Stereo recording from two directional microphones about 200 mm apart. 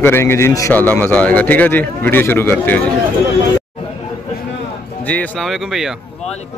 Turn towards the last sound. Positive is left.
turn(degrees=0)  # may be behind; listen again after turning